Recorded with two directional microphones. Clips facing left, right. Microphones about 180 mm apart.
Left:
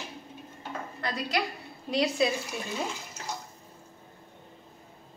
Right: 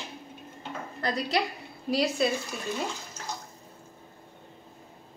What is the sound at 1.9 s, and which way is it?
Speech, 5° right (ahead or behind).